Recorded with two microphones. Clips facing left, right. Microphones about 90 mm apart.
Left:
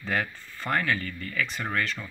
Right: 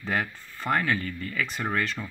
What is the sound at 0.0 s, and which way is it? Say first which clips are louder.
Speech: even; 15° right (ahead or behind).